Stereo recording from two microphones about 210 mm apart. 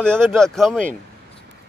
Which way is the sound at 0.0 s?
5° left (ahead or behind).